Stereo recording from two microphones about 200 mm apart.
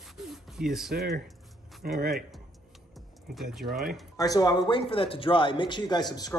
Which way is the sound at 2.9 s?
Centre (ahead or behind).